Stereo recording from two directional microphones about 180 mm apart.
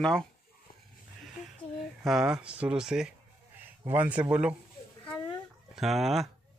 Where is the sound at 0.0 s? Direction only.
5° left (ahead or behind).